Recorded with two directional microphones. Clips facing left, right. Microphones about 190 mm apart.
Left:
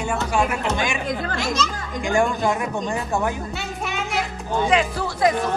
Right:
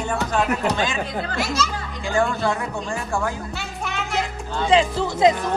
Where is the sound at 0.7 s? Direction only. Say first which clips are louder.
Even; 15° left (ahead or behind).